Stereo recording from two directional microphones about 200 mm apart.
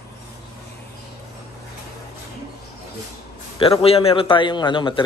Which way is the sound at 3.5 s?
30° left (ahead or behind).